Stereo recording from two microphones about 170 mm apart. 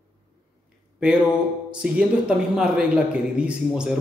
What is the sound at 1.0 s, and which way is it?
A man's voice, 5° right (ahead or behind).